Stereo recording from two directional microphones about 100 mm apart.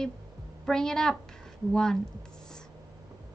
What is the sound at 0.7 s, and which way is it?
A woman's voice, 5° left (ahead or behind).